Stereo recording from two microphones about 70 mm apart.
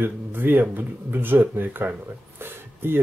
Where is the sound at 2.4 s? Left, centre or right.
Right.